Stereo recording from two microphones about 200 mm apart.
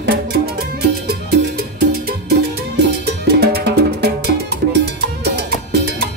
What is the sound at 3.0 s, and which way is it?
Music, 50° right (ahead or behind).